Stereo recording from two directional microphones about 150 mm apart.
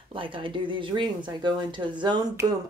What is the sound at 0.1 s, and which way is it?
Speech, 35° right (ahead or behind).